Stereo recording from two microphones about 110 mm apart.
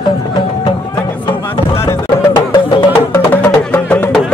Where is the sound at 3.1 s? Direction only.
15° left (ahead or behind).